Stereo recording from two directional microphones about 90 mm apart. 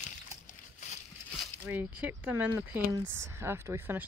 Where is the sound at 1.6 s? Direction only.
20° right (ahead or behind).